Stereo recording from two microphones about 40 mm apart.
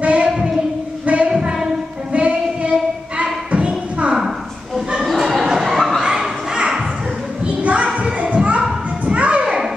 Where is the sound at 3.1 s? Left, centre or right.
Right.